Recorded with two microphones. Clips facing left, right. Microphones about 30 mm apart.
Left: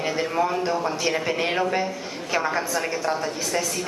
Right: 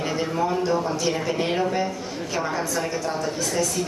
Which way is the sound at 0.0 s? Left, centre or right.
Centre.